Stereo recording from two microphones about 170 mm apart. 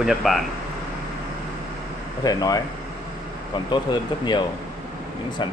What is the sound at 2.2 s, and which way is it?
Speech, 20° left (ahead or behind).